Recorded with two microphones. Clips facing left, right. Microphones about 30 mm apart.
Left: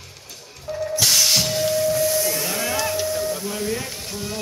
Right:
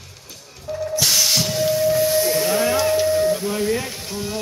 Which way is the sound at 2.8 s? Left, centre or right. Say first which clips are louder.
Right 6 dB; centre.